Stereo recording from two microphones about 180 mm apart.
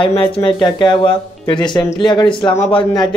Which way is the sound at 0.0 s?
30° left (ahead or behind).